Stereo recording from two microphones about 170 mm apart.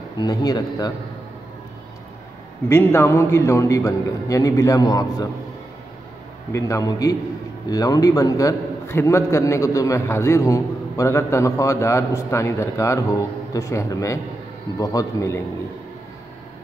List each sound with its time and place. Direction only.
0.2 s speech: 25° left (ahead or behind)
2.7 s a man's voice: 15° left (ahead or behind)
6.5 s a man's voice: 20° left (ahead or behind)